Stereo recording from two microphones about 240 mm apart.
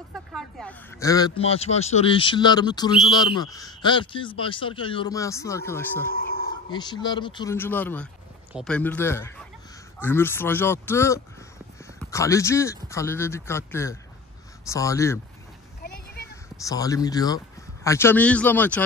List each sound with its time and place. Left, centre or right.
0.1 s speech: centre
6.0 s a sound: left
6.7 s speech: centre
16.6 s speech: centre